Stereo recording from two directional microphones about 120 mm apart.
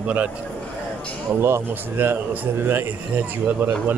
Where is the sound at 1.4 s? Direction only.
20° right (ahead or behind).